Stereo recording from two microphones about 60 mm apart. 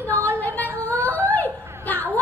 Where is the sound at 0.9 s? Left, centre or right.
Right.